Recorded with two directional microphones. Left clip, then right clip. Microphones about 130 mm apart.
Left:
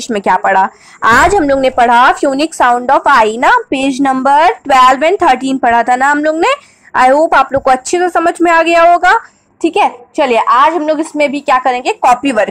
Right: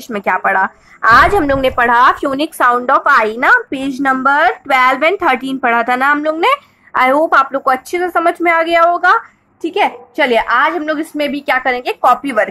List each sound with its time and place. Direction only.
0.0 s a woman's voice: 30° left (ahead or behind)